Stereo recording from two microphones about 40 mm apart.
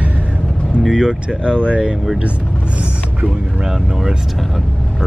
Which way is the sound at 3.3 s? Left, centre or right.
Right.